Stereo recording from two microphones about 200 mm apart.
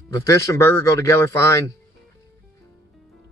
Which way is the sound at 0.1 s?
15° left (ahead or behind).